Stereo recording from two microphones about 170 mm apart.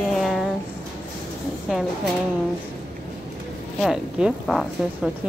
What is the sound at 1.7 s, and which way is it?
Speech, centre (ahead or behind).